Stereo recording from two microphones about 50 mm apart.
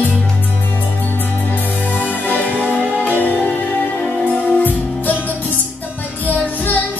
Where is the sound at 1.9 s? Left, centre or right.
Left.